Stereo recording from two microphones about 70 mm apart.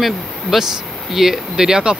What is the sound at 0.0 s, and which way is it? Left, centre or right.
Speech, centre.